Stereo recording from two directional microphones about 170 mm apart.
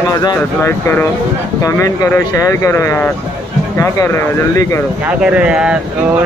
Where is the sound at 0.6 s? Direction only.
15° left (ahead or behind).